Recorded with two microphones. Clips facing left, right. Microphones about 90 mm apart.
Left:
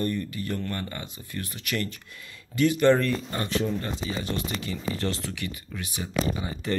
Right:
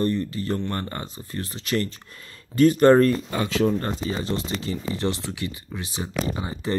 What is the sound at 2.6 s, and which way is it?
Speech, 40° right (ahead or behind).